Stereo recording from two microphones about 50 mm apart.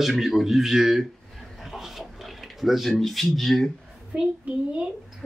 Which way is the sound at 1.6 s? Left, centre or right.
Centre.